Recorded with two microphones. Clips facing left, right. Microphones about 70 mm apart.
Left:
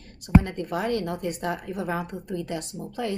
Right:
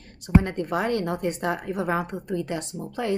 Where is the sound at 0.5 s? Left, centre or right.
Right.